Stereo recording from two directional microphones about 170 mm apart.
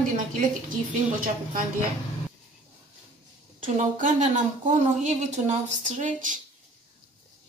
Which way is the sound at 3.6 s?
50° right (ahead or behind).